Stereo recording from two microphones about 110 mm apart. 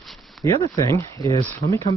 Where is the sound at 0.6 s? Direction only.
30° left (ahead or behind).